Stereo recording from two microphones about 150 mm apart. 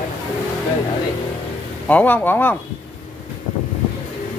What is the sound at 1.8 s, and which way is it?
Speech, 10° left (ahead or behind).